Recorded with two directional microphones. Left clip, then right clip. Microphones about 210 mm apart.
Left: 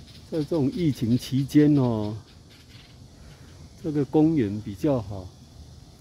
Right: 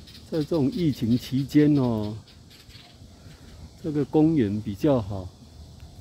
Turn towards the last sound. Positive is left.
turn(degrees=-10)  # may be behind; listen again after turning